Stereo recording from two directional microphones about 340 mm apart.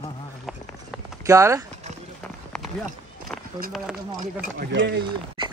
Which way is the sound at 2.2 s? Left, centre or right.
Centre.